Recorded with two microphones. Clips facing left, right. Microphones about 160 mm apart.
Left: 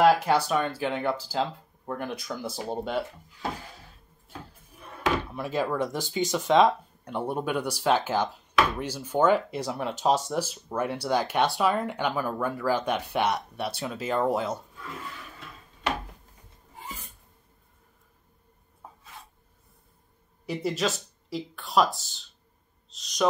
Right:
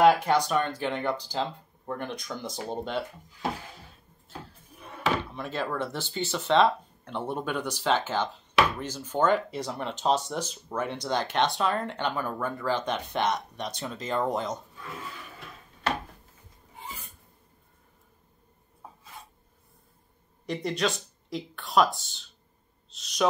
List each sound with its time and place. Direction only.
0.0 s speech: 10° left (ahead or behind)
5.3 s speech: 10° left (ahead or behind)
20.4 s speech: 5° left (ahead or behind)